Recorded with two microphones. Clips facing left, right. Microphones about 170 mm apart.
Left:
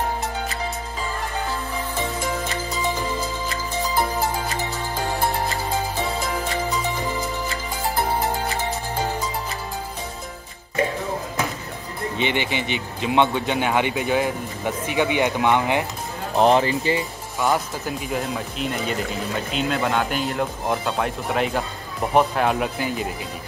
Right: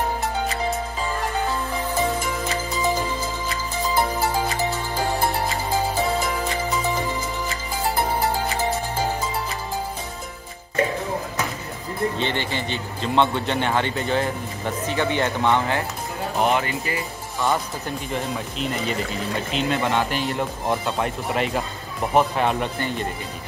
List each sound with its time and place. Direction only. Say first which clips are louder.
12.2 s speech: left 2 dB; 15° left (ahead or behind)
16.3 s speech: left 5 dB; 30° left (ahead or behind)
17.5 s speech: left 1 dB; 5° left (ahead or behind)